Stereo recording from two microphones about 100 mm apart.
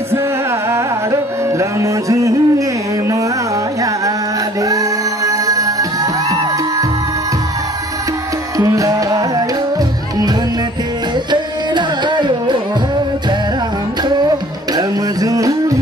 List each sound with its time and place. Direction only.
0.7 s music: 30° right (ahead or behind)
5.2 s music: 35° right (ahead or behind)
8.5 s music: 35° right (ahead or behind)
11.7 s carnatic music: 50° right (ahead or behind)
14.8 s music: 35° right (ahead or behind)